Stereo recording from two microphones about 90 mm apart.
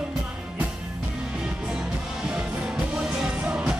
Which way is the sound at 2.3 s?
10° right (ahead or behind).